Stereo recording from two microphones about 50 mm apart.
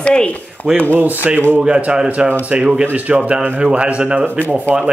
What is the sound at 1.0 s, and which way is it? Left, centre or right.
Speech, right.